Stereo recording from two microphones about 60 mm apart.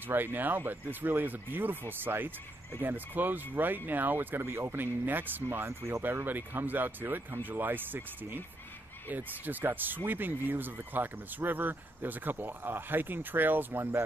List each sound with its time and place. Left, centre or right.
0.1 s speech: right
4.4 s speech: right
6.2 s speech: right